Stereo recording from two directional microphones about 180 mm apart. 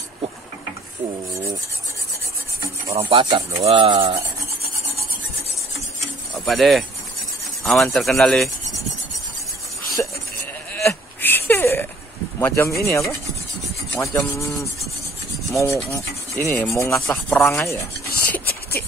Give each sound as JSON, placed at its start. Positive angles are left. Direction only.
{"t": 2.9, "sound": "speech", "side_deg": -30}
{"t": 6.3, "sound": "speech", "side_deg": 0}
{"t": 10.0, "sound": "sheep", "side_deg": 10}
{"t": 10.7, "sound": "a sound", "side_deg": 10}
{"t": 12.4, "sound": "rub", "side_deg": 15}